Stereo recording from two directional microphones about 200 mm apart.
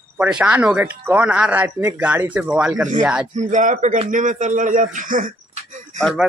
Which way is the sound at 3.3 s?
40° right (ahead or behind).